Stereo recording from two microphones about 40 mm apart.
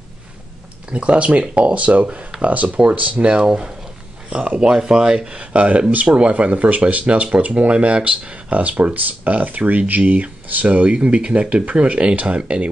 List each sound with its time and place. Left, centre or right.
0.9 s speech: right
3.4 s speech: centre
5.5 s speech: right